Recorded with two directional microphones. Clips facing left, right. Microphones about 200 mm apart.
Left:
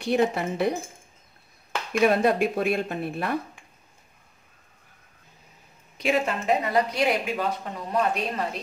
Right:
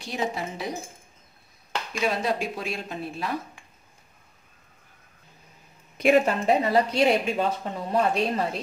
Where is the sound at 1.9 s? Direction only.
55° left (ahead or behind).